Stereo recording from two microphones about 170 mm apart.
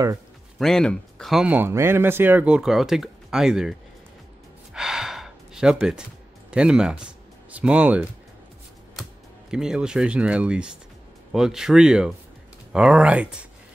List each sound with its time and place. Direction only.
0.6 s speech: 5° left (ahead or behind)
4.7 s gasp: 5° right (ahead or behind)
6.5 s speech: 5° right (ahead or behind)
9.5 s speech: 5° right (ahead or behind)